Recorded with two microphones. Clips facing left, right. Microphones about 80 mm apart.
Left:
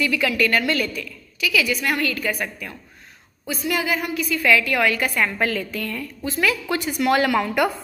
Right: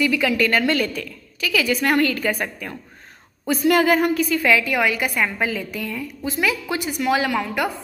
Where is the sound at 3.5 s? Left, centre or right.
Right.